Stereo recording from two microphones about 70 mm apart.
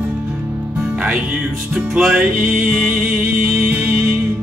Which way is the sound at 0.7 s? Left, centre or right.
Centre.